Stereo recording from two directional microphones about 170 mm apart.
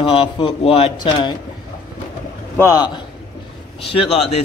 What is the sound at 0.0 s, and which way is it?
Speech, 30° left (ahead or behind).